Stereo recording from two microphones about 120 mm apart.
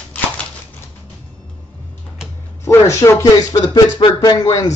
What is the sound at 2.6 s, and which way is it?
Speech, 25° left (ahead or behind).